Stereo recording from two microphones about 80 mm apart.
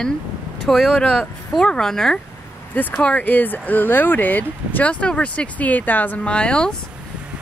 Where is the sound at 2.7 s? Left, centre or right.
Centre.